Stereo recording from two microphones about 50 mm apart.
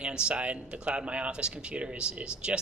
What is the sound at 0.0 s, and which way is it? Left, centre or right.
Speech, centre.